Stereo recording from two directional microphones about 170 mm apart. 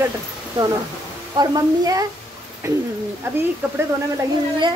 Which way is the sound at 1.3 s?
25° right (ahead or behind).